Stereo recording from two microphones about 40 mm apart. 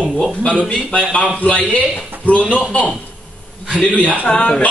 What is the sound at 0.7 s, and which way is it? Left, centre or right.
Speech, left.